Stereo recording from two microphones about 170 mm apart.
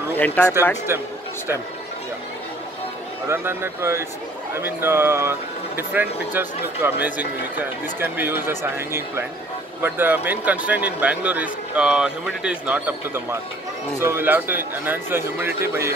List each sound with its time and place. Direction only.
0.1 s speech: 10° left (ahead or behind)
3.3 s speech: 15° right (ahead or behind)